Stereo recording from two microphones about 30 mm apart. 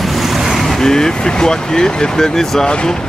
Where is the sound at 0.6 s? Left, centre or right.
Centre.